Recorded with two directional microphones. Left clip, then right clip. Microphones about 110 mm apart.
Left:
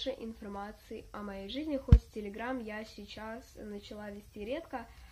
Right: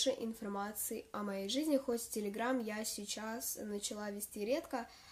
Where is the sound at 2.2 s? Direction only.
60° right (ahead or behind).